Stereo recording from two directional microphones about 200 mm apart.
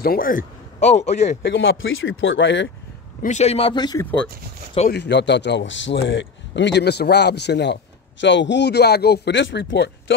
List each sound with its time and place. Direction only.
0.0 s speech: 45° left (ahead or behind)
1.4 s speech: 70° left (ahead or behind)
3.2 s speech: 35° left (ahead or behind)
4.9 s a man's voice: 60° left (ahead or behind)